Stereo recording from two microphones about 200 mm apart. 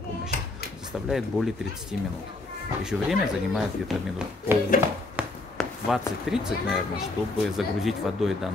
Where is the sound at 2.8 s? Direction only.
5° right (ahead or behind).